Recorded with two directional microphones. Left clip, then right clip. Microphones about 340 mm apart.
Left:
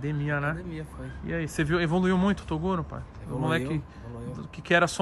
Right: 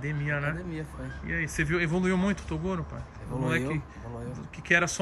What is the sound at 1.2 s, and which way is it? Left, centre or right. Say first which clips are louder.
Speech: right 1 dB; left.